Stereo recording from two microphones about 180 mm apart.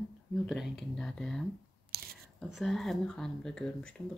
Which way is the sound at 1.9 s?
60° right (ahead or behind).